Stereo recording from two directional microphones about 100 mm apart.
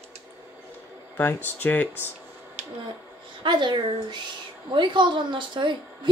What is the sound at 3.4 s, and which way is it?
A woman's voice, 50° right (ahead or behind).